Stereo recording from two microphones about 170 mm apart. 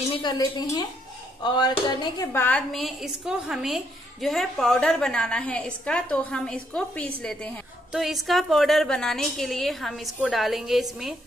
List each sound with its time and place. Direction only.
0.1 s speech: 25° left (ahead or behind)
2.4 s a woman's voice: 5° left (ahead or behind)